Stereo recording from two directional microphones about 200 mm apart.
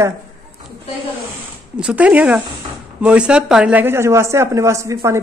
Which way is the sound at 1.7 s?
5° right (ahead or behind).